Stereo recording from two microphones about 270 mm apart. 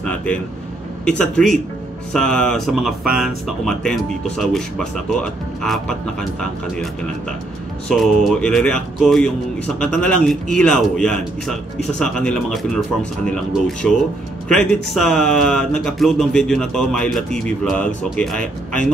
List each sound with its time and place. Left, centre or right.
0.0 s a sound: centre
1.0 s speech: centre
7.9 s speech: centre